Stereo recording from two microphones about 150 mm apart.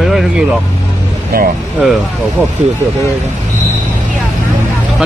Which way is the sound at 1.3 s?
90° right.